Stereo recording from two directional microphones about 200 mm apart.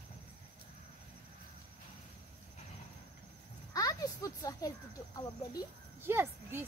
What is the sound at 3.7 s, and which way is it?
Speech, 15° left (ahead or behind).